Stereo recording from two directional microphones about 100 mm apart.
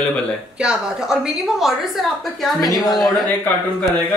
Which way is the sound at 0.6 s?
10° right (ahead or behind).